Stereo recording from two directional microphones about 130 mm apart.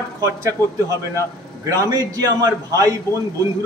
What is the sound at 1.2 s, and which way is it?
A man's voice, 25° right (ahead or behind).